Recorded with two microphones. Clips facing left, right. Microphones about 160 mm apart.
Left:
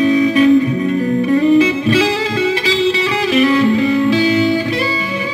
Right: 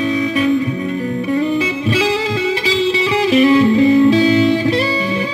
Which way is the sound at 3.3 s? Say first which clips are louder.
Right 1 dB; 30° right (ahead or behind).